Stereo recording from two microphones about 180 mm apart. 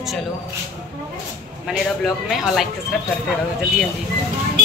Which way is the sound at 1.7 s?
Centre (ahead or behind).